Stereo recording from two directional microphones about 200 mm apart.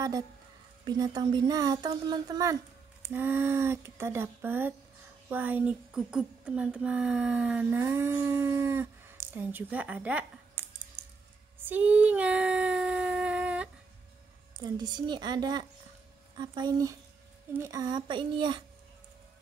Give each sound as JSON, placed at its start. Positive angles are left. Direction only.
{"t": 0.8, "sound": "speech", "side_deg": -20}
{"t": 11.0, "sound": "a sound", "side_deg": -15}
{"t": 14.6, "sound": "speech", "side_deg": -20}